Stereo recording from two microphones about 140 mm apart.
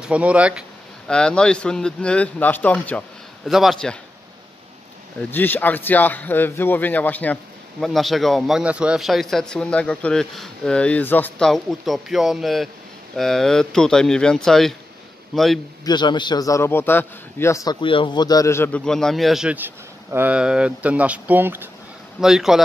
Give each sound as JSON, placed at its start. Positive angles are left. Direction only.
{"t": 0.0, "sound": "speech", "side_deg": -10}
{"t": 1.0, "sound": "speech", "side_deg": 5}
{"t": 3.4, "sound": "a man's voice", "side_deg": 0}
{"t": 5.3, "sound": "speech", "side_deg": 15}
{"t": 7.8, "sound": "a man's voice", "side_deg": 0}
{"t": 15.8, "sound": "a man's voice", "side_deg": 30}
{"t": 17.7, "sound": "a man's voice", "side_deg": 35}
{"t": 18.9, "sound": "speech", "side_deg": 5}
{"t": 22.2, "sound": "a man's voice", "side_deg": -5}